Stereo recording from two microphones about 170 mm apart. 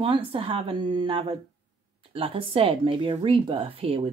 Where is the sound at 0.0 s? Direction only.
30° right (ahead or behind).